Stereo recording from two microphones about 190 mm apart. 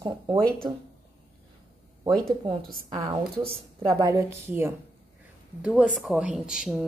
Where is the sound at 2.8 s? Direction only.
25° right (ahead or behind).